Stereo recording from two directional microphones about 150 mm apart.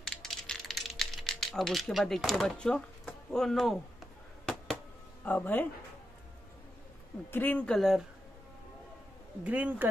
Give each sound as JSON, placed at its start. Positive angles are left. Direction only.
{"t": 0.1, "sound": "typing", "side_deg": 5}
{"t": 5.2, "sound": "speech", "side_deg": 10}
{"t": 7.2, "sound": "speech", "side_deg": 10}
{"t": 9.4, "sound": "speech", "side_deg": -10}